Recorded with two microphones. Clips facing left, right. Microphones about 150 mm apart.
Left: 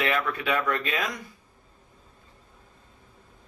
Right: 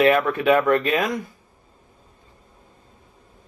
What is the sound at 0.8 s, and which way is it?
Speech, 55° right (ahead or behind).